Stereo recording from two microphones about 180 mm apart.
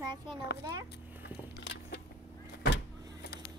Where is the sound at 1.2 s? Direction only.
85° left.